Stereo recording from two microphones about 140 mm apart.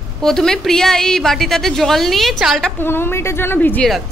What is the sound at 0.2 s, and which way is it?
A woman's voice, 5° left (ahead or behind).